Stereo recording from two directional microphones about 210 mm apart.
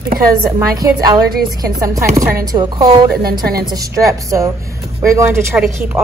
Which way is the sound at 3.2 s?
45° right (ahead or behind).